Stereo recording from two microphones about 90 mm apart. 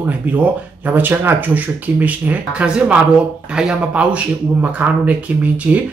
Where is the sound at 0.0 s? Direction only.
15° right (ahead or behind).